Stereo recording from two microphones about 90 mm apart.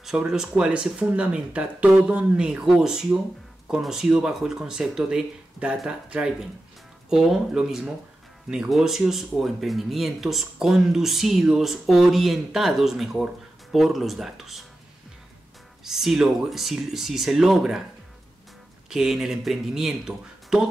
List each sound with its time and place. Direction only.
0.0 s speech: 5° right (ahead or behind)
15.8 s speech: 5° right (ahead or behind)
18.9 s speech: 5° right (ahead or behind)